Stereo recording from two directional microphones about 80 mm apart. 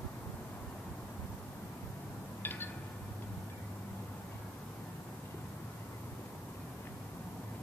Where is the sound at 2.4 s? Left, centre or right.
Left.